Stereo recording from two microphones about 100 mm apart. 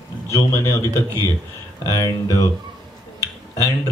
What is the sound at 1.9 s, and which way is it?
Speech, 35° left (ahead or behind).